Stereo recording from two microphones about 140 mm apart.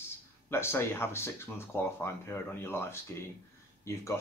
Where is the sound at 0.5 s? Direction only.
20° left (ahead or behind).